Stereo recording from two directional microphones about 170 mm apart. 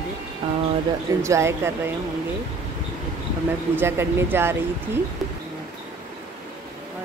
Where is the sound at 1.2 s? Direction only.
15° right (ahead or behind).